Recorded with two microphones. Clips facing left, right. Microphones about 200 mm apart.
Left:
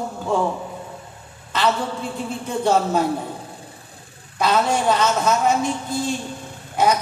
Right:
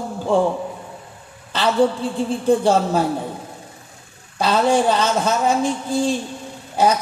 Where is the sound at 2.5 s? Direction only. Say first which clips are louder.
Right 3 dB; 30° right (ahead or behind).